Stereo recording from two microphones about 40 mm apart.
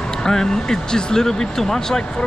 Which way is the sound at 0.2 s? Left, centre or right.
Centre.